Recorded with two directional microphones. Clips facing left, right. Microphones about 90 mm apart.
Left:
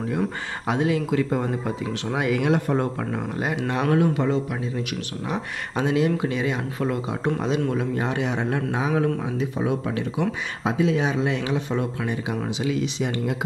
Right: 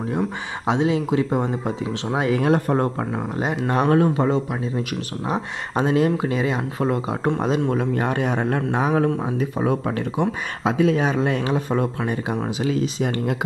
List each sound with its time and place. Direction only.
0.7 s speech: 20° right (ahead or behind); by 2.9 s 40° right (ahead or behind)
3.0 s speech: 25° right (ahead or behind)
3.8 s speech: 35° right (ahead or behind)
7.7 s speech: 55° right (ahead or behind)
10.6 s speech: 70° right (ahead or behind)
10.9 s speech: 50° right (ahead or behind)